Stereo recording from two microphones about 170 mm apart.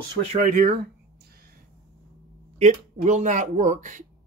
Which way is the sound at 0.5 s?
55° right (ahead or behind).